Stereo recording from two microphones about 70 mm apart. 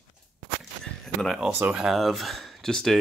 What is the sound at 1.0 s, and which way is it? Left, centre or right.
Speech, centre.